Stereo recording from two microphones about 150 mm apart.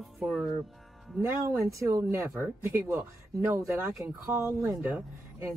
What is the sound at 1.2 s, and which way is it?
Speech, 15° right (ahead or behind).